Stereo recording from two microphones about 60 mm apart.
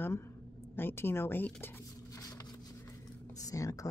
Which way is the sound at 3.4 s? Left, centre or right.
Left.